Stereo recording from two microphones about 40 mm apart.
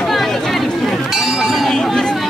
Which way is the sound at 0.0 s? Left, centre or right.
Centre.